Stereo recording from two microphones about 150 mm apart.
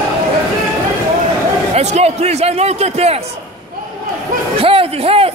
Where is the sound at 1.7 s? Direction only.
45° right (ahead or behind).